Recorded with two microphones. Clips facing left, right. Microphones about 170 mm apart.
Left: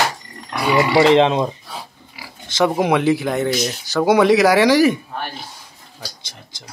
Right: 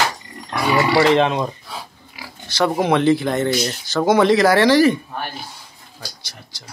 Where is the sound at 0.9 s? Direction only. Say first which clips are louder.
Left 4 dB; 20° left (ahead or behind).